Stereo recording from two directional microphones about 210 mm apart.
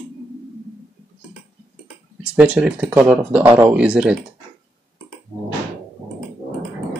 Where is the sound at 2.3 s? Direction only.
5° right (ahead or behind).